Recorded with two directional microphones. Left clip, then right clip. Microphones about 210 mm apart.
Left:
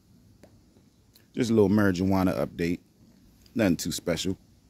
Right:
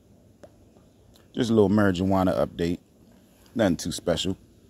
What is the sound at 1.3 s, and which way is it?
Speech, 5° left (ahead or behind).